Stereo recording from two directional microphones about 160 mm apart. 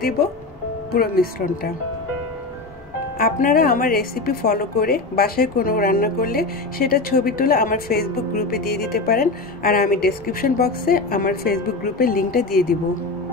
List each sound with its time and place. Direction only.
0.9 s a woman's voice: 70° left (ahead or behind)
3.2 s a woman's voice: 65° left (ahead or behind)